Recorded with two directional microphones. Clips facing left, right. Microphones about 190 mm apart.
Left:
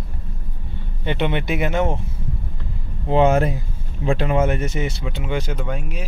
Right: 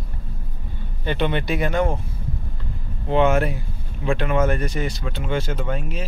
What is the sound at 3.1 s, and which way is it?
A man's voice, 35° left (ahead or behind).